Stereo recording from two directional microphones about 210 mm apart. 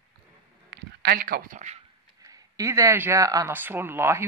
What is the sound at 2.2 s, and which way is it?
Speech, 15° right (ahead or behind).